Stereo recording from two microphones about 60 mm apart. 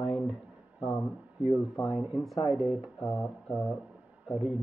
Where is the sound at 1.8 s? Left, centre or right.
Centre.